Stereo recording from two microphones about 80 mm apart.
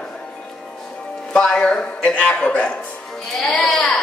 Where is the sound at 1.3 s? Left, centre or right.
Centre.